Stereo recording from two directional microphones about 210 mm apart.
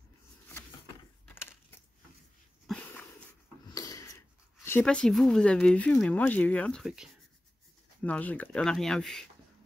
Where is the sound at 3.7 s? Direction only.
15° left (ahead or behind).